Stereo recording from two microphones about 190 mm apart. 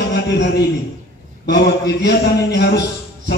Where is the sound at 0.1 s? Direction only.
65° left (ahead or behind).